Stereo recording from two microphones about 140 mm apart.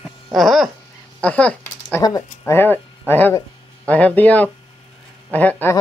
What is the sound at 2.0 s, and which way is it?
Speech, 25° left (ahead or behind).